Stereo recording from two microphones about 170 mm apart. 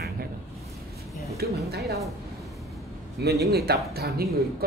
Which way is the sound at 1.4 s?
65° right (ahead or behind).